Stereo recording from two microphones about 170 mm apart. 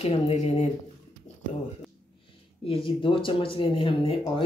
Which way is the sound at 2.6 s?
30° left (ahead or behind).